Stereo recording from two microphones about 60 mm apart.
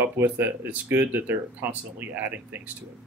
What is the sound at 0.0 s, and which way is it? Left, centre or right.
Speech, right.